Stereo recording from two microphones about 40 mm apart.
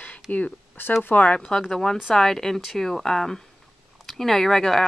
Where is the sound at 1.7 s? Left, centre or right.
Centre.